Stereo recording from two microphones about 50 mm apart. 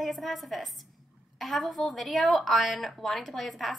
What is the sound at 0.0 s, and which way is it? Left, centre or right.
A woman's voice, centre.